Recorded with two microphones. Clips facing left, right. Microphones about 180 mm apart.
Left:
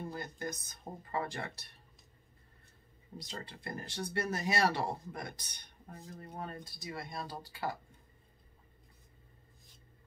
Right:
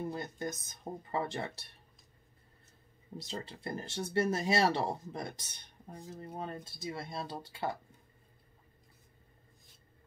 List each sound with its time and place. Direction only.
0.1 s speech: 25° right (ahead or behind)
3.2 s speech: 25° right (ahead or behind)